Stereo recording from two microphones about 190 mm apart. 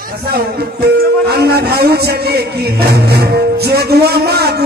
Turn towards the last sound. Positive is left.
turn(degrees=-60)  # may be behind; listen again after turning